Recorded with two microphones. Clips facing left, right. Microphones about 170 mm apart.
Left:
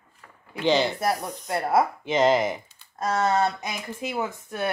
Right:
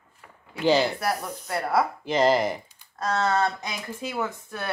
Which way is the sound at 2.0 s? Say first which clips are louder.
Even; centre (ahead or behind).